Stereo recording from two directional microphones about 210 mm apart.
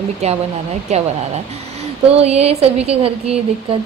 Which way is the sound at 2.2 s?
30° right (ahead or behind).